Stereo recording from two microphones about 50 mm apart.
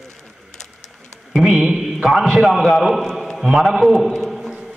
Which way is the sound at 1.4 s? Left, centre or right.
Centre.